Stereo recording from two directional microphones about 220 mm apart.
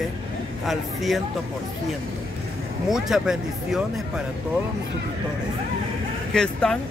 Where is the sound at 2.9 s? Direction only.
Centre (ahead or behind).